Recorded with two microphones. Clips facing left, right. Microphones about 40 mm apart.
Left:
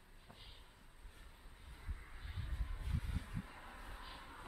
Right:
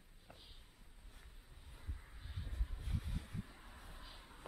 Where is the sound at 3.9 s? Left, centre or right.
Centre.